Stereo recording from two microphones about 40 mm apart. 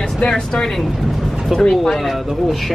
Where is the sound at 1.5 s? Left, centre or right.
Centre.